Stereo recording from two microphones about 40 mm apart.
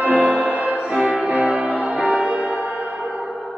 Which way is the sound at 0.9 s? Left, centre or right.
Centre.